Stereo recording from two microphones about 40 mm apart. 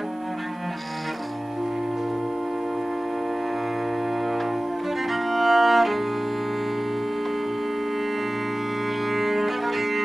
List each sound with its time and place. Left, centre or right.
4.2 s music: centre
9.0 s music: centre